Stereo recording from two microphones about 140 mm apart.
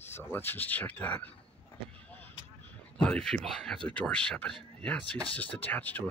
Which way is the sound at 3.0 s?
5° left (ahead or behind).